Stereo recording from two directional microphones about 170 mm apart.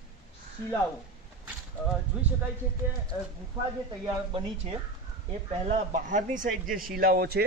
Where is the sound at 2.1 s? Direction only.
5° right (ahead or behind).